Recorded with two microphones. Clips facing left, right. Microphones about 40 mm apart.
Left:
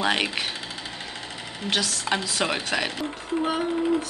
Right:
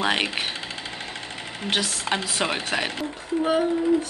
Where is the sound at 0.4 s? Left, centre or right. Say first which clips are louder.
Right 1 dB; right.